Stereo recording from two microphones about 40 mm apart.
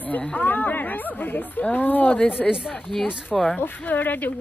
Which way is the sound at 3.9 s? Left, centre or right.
Left.